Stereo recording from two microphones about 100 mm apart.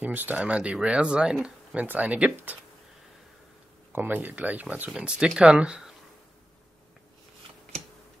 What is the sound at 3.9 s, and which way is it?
Speech, 20° right (ahead or behind).